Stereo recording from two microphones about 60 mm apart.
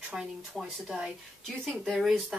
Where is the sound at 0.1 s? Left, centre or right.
Centre.